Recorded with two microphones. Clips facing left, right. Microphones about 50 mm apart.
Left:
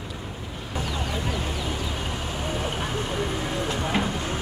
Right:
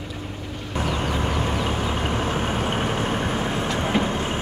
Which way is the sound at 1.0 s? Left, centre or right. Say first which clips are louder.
Right 5 dB; right.